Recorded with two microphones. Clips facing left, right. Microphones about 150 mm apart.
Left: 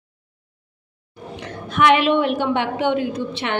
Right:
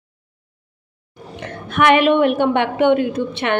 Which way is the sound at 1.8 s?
55° right (ahead or behind).